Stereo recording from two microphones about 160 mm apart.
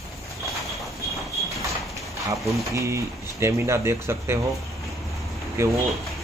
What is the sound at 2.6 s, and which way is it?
Speech, 20° right (ahead or behind).